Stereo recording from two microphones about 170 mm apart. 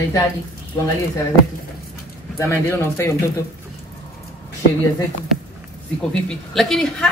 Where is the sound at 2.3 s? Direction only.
15° left (ahead or behind).